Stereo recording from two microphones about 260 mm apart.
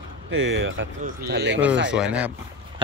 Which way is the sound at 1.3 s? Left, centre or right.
Right.